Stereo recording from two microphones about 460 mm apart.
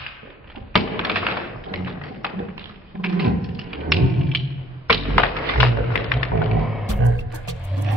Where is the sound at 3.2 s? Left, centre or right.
Centre.